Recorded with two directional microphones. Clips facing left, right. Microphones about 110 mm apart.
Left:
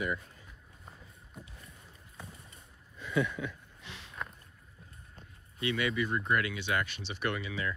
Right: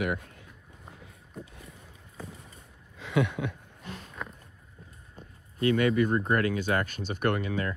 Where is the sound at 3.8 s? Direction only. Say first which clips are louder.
Right 7 dB; 45° right (ahead or behind).